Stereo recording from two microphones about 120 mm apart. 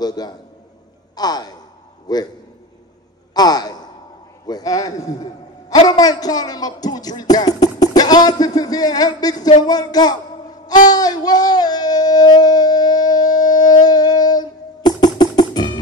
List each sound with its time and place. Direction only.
0.0 s a man's voice: 35° left (ahead or behind)
1.1 s sigh: 35° left (ahead or behind)
2.1 s a man's voice: 35° left (ahead or behind)
3.3 s a man's voice: 35° left (ahead or behind)
10.9 s a sound: 35° left (ahead or behind)